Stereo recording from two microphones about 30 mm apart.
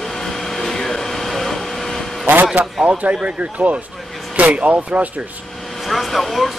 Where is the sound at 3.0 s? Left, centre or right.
Right.